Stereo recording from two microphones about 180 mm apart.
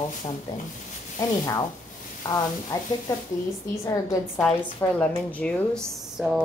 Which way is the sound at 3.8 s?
15° left (ahead or behind).